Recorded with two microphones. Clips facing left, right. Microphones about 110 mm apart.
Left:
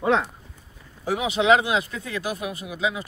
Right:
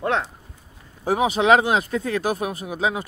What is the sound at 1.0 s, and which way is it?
Speech, 40° right (ahead or behind).